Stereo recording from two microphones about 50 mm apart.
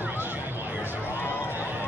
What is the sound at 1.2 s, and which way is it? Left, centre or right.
Run, left.